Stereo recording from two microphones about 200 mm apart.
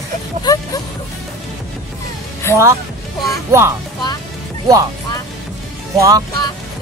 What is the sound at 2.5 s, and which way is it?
Speech, 15° left (ahead or behind).